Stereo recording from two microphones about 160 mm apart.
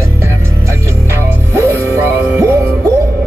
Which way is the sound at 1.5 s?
15° right (ahead or behind).